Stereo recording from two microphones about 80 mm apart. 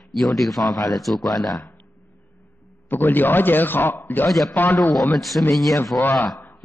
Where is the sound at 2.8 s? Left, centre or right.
Left.